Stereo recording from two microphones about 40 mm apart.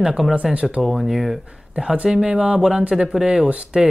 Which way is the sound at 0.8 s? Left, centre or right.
Centre.